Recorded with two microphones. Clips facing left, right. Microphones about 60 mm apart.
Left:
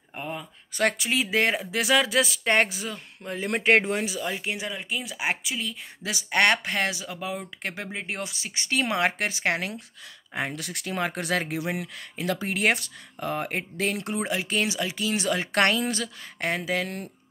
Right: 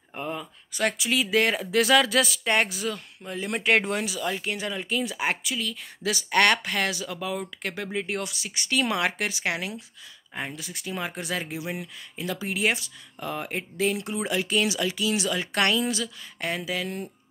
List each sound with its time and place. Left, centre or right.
0.1 s speech: centre
0.7 s speech: left
1.6 s speech: centre
3.3 s speech: left
3.8 s speech: left
4.3 s speech: centre
5.3 s speech: left
10.3 s speech: left